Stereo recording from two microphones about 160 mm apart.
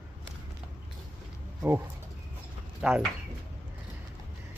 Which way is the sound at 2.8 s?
5° right (ahead or behind).